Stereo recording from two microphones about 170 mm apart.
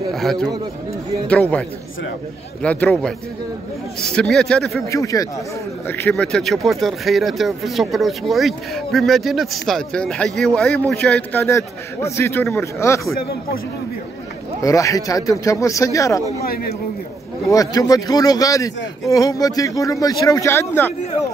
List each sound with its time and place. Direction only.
0.1 s a man's voice: centre (ahead or behind)
4.8 s a man's voice: 20° left (ahead or behind)
14.6 s speech: 20° left (ahead or behind)
17.5 s speech: 20° left (ahead or behind)